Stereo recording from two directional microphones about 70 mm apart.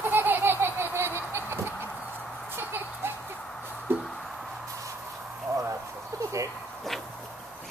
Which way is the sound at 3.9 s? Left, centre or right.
Right.